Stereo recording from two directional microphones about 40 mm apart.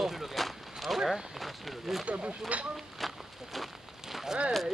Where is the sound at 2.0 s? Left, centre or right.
Right.